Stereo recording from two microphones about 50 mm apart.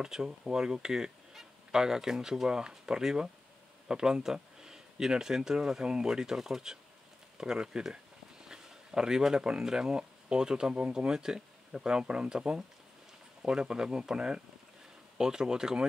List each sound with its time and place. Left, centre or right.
0.0 s speech: centre